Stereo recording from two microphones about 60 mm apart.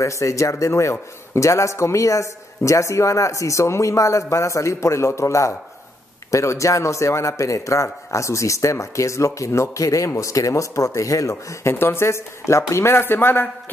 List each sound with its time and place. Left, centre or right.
0.0 s a man's voice: left
11.7 s speech: left